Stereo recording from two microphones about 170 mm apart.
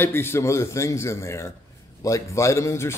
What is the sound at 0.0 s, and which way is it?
A man's voice, 15° left (ahead or behind).